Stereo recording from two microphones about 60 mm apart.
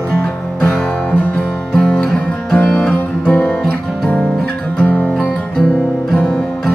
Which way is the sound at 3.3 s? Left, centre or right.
Left.